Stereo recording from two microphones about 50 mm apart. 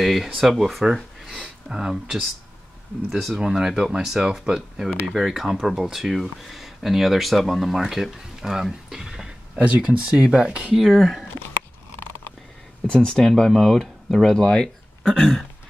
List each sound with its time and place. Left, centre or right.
0.0 s speech: centre
1.2 s a sound: centre
3.3 s speech: centre
8.9 s a sound: centre
9.6 s speech: right
9.8 s speech: centre
10.8 s speech: centre
12.8 s speech: centre
13.5 s speech: centre